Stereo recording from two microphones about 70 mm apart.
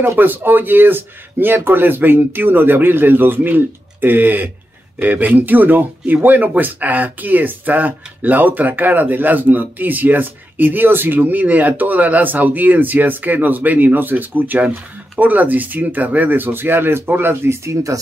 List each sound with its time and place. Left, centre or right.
0.0 s speech: right